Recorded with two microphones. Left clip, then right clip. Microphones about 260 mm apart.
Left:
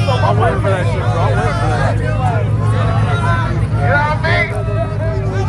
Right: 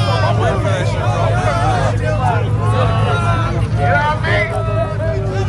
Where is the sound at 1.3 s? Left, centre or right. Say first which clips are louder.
Right 1 dB; right.